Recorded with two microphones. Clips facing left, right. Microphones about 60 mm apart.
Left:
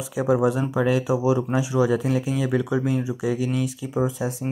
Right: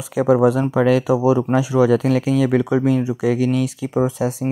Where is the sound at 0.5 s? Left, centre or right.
Right.